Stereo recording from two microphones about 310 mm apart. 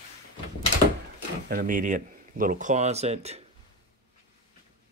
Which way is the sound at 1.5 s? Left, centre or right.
Right.